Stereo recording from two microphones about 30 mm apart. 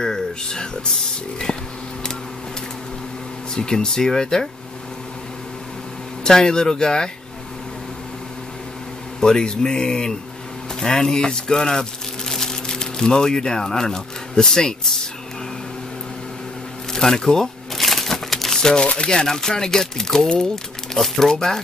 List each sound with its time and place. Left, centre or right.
0.0 s a sound: centre
1.5 s speech: left
3.5 s speech: left
6.2 s speech: left
9.2 s speech: left
16.9 s speech: centre
17.7 s crushing: centre
18.3 s crumpling: centre
18.6 s speech: left